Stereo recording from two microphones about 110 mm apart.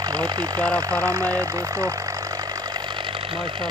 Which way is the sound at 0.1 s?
40° right (ahead or behind).